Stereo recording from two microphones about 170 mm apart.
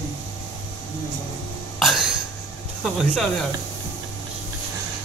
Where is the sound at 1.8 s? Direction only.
Centre (ahead or behind).